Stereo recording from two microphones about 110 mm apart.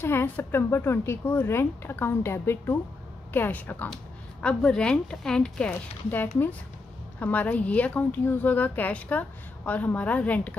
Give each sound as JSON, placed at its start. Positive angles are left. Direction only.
{"t": 0.0, "sound": "a woman's voice", "side_deg": 20}
{"t": 5.7, "sound": "a woman's voice", "side_deg": 20}